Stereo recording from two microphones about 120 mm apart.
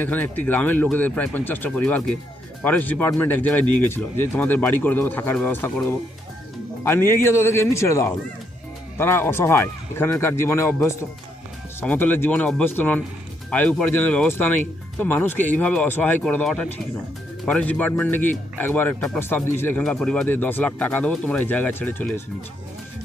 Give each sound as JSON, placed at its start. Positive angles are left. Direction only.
{"t": 0.0, "sound": "a man's voice", "side_deg": 15}
{"t": 11.8, "sound": "a man's voice", "side_deg": 15}
{"t": 19.8, "sound": "speech", "side_deg": 10}